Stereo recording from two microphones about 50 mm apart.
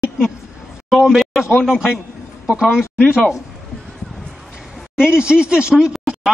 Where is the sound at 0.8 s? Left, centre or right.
Centre.